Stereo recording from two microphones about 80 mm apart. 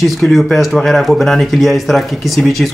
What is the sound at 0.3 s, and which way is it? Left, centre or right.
Speech, centre.